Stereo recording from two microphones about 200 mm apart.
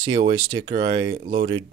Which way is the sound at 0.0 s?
25° right (ahead or behind).